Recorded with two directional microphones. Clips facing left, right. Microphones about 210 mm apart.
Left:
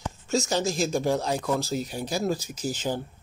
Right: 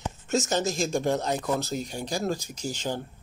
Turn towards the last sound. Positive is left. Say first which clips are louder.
# left 2 dB
turn(degrees=10)  # may be behind; listen again after turning